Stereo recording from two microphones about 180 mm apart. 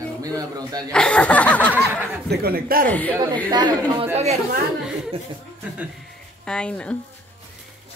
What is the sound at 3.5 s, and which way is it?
Speech, 25° right (ahead or behind).